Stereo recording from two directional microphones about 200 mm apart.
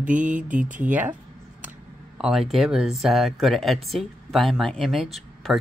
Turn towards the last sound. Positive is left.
turn(degrees=0)  # may be behind; listen again after turning